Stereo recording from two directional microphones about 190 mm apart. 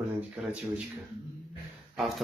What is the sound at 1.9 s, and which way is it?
Speech, centre (ahead or behind).